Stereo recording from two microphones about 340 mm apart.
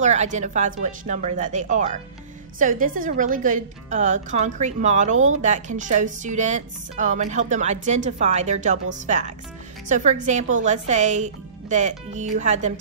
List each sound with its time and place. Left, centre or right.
0.0 s a woman's voice: centre